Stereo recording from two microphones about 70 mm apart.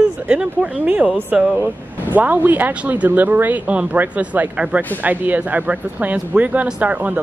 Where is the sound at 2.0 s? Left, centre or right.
Right.